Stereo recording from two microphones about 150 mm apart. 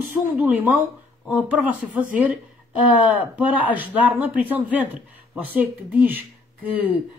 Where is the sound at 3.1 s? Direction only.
10° right (ahead or behind).